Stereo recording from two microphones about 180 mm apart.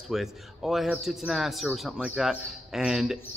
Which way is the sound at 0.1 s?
Centre (ahead or behind).